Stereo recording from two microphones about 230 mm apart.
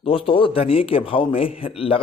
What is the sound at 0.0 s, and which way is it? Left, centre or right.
Speech, left.